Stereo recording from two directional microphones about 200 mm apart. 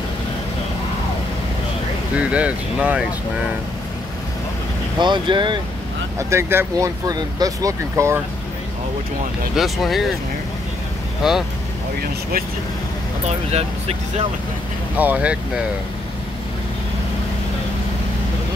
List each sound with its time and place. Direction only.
2.1 s speech: 5° right (ahead or behind)
5.0 s speech: 25° right (ahead or behind)
6.1 s speech: 10° right (ahead or behind)
9.6 s speech: centre (ahead or behind)
11.2 s speech: 5° right (ahead or behind)
13.5 s speech: 30° right (ahead or behind)
15.0 s speech: 5° right (ahead or behind)